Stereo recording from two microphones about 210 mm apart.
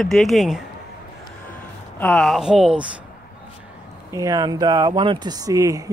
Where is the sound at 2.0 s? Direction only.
5° left (ahead or behind).